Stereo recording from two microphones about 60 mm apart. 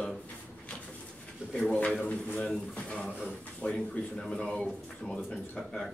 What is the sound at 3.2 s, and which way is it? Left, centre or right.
A man's voice, left.